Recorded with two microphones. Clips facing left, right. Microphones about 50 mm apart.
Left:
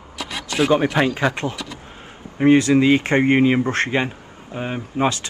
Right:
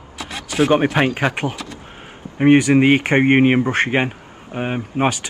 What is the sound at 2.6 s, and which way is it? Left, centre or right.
Speech, right.